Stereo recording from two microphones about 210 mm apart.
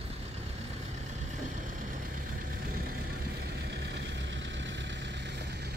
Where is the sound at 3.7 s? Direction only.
55° right (ahead or behind).